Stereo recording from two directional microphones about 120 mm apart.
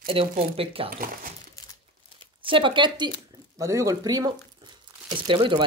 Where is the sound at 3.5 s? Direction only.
25° right (ahead or behind).